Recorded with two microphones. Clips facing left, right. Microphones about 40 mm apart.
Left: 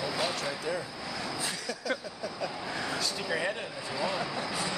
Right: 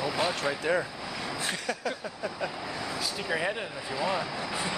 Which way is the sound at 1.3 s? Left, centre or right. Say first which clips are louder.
Right 3 dB; right.